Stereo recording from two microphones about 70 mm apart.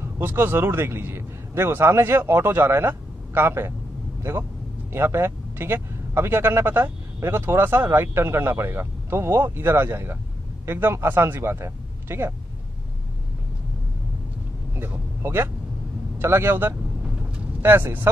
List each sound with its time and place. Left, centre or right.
0.0 s a man's voice: right
14.8 s vehicle: right
16.2 s speech: right